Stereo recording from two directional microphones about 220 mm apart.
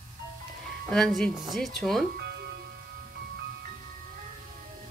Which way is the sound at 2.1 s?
50° right (ahead or behind).